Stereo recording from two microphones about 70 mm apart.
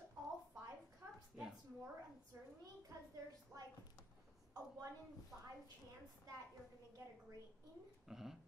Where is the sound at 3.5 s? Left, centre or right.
Right.